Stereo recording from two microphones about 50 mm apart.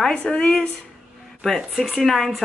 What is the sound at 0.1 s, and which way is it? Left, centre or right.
Speech, centre.